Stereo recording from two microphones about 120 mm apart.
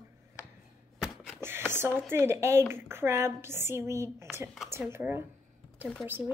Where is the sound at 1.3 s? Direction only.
20° right (ahead or behind).